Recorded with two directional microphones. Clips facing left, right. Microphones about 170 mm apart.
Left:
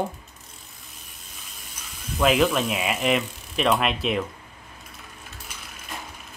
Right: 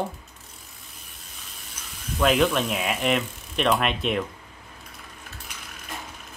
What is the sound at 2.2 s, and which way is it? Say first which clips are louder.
Speech: left 1 dB; 5° left (ahead or behind).